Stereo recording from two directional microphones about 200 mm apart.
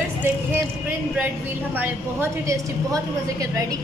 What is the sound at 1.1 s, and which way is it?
A woman's voice, 10° right (ahead or behind).